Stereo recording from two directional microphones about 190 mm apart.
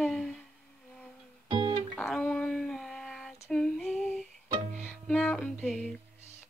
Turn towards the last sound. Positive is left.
turn(degrees=0)  # may be behind; listen again after turning